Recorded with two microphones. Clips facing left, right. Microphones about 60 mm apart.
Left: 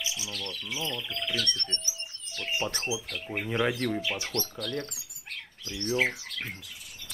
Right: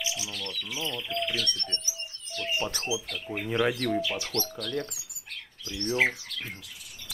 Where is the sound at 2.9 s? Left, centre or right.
Left.